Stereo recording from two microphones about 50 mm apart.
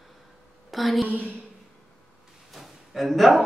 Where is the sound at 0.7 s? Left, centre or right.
Centre.